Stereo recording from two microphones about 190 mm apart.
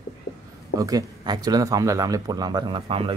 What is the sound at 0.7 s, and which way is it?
Speech, 20° right (ahead or behind).